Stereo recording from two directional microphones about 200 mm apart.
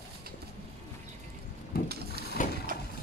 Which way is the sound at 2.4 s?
40° left (ahead or behind).